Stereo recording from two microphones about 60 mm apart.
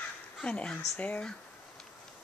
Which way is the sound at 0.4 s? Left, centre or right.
Centre.